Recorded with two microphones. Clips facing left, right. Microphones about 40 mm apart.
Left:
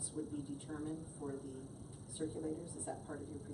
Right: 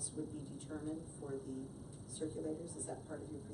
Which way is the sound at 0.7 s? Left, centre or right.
Centre.